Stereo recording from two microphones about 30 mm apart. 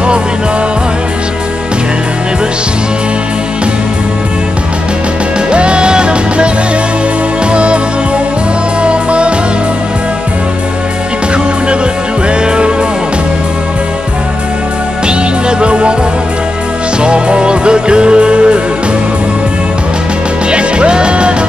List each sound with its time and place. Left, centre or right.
5.5 s music: right
7.5 s music: right
8.8 s music: right
15.6 s music: right
17.0 s music: right
20.4 s music: right